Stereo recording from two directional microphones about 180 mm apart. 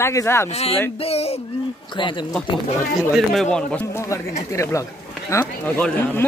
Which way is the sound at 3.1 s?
5° left (ahead or behind).